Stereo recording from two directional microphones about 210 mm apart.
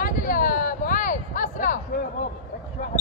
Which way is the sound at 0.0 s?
40° left (ahead or behind).